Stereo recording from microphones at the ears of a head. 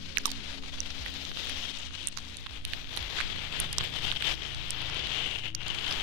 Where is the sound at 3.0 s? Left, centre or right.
Left.